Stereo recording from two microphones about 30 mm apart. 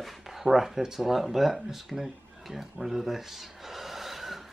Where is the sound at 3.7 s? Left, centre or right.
Centre.